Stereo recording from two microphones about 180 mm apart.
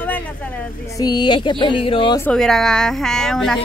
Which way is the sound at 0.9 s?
25° left (ahead or behind).